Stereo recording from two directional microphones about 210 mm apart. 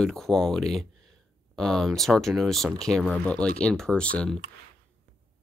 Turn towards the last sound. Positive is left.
turn(degrees=5)  # may be behind; listen again after turning